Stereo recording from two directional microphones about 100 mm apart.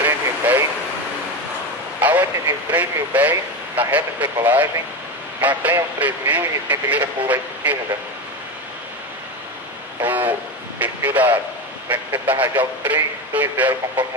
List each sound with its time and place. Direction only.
0.0 s vehicle: 20° right (ahead or behind)
2.0 s a sound: 15° right (ahead or behind)
2.7 s speech: 15° right (ahead or behind)
10.0 s speech: 15° right (ahead or behind)